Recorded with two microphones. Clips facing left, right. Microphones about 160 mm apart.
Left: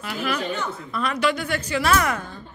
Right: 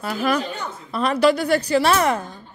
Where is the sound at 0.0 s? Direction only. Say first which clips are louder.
Right 5 dB; 40° right (ahead or behind).